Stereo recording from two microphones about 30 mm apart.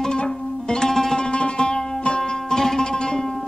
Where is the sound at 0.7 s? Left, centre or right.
Centre.